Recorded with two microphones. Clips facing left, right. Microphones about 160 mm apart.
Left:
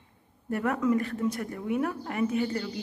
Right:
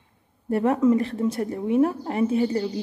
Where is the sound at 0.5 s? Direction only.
30° right (ahead or behind).